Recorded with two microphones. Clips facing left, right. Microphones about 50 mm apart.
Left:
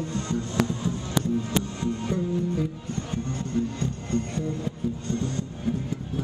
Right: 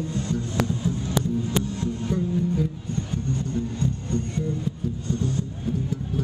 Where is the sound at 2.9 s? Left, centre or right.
Left.